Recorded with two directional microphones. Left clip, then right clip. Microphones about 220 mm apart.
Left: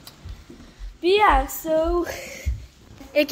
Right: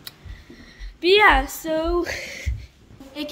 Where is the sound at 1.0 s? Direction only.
15° right (ahead or behind).